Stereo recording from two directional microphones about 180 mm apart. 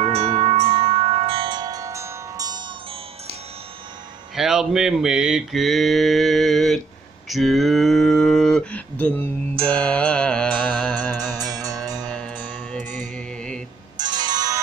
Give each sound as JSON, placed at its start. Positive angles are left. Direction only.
{"t": 0.0, "sound": "music", "side_deg": -35}
{"t": 4.4, "sound": "mantra", "side_deg": -5}
{"t": 7.2, "sound": "cattle", "side_deg": 0}
{"t": 9.7, "sound": "music", "side_deg": 5}
{"t": 12.7, "sound": "music", "side_deg": -45}
{"t": 13.9, "sound": "music", "side_deg": -25}